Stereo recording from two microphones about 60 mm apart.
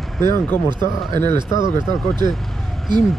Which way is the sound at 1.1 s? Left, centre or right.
Left.